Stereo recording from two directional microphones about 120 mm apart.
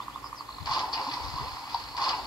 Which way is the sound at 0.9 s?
35° left (ahead or behind).